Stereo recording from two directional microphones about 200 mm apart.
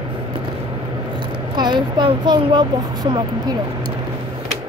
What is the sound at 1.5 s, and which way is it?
Speech, 20° right (ahead or behind).